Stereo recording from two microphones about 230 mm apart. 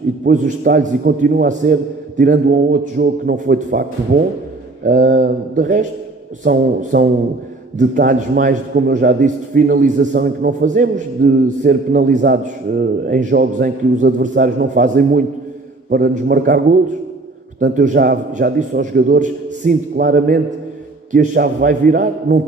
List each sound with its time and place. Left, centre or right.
0.2 s a man's voice: right
12.2 s a man's voice: right